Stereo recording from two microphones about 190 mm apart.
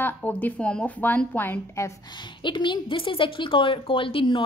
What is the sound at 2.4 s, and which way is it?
Speech, 25° left (ahead or behind).